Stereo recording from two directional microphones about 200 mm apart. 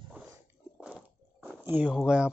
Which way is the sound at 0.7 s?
5° right (ahead or behind).